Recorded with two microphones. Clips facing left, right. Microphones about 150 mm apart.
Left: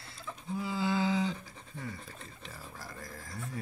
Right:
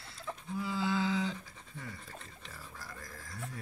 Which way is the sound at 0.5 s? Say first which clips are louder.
Left 2 dB; 15° left (ahead or behind).